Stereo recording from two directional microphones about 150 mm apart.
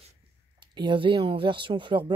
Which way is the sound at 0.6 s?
30° right (ahead or behind).